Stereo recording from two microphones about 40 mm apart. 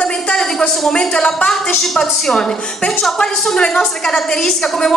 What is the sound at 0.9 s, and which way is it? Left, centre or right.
Speech, left.